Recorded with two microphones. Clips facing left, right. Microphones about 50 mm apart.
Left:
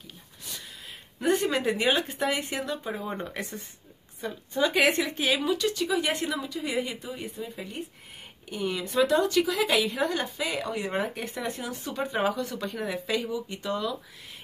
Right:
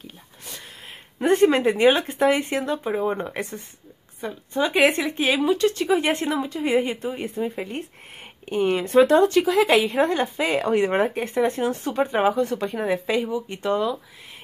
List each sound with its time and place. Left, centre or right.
1.2 s speech: right